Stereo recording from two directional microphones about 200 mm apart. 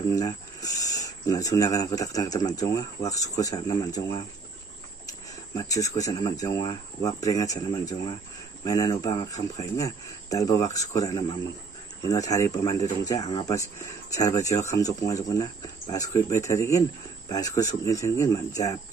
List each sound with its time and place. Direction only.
0.1 s speech: 15° left (ahead or behind)
5.6 s speech: 15° left (ahead or behind)